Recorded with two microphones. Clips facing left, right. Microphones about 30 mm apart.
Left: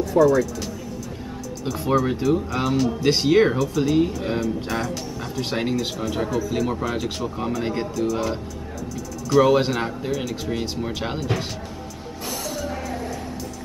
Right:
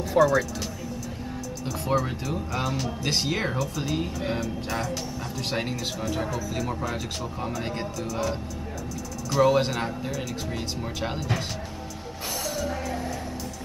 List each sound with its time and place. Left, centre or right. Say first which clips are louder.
0.2 s speech: left 3 dB; centre
1.6 s speech: left 5 dB; centre
3.5 s speech: left 8 dB; centre
9.4 s speech: left 3 dB; centre
12.3 s music: left 1 dB; centre